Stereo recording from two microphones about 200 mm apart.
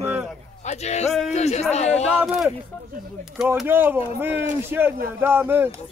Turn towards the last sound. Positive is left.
turn(degrees=-10)  # may be behind; listen again after turning